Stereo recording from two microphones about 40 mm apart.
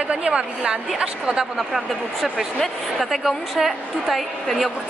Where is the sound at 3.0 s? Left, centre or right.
Centre.